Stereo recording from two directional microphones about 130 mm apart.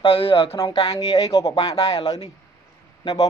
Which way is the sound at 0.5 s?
30° left (ahead or behind).